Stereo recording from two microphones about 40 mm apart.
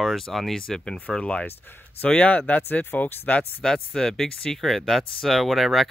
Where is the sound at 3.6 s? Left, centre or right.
Centre.